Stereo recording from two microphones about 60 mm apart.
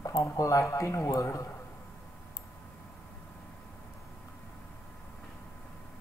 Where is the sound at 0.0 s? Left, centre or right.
Left.